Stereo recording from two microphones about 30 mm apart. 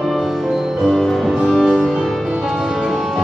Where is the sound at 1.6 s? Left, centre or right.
Centre.